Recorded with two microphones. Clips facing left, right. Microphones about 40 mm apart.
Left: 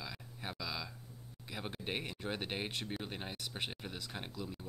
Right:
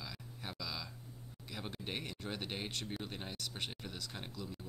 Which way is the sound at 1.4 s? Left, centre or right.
Centre.